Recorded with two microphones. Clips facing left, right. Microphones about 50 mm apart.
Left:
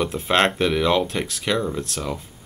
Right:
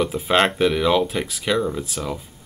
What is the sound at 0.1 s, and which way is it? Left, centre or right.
Speech, centre.